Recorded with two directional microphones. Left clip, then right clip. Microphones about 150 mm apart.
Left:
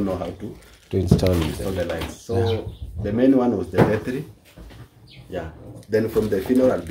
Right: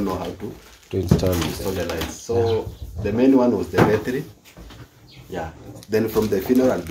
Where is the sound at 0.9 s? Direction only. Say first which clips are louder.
Left 1 dB; 25° left (ahead or behind).